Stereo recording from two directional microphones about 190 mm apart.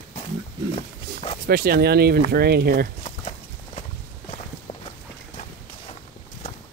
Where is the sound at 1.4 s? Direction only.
55° right (ahead or behind).